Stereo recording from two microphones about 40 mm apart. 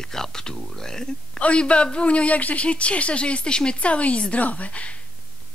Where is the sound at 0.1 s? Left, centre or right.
Centre.